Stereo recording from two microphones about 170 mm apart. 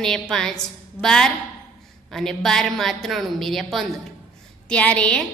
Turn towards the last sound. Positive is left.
turn(degrees=5)  # may be behind; listen again after turning